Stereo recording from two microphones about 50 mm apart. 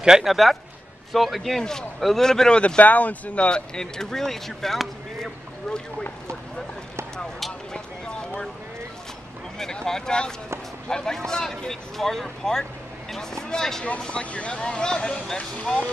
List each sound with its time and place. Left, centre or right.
0.0 s speech: centre
0.3 s a man's voice: centre
1.6 s speech: centre
2.8 s speech: left; by 6.0 s centre
7.7 s a sound: centre
9.6 s speech: centre
13.8 s speech: left